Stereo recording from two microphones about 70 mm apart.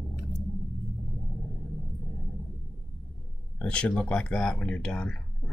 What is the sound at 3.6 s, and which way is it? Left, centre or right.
Speech, centre.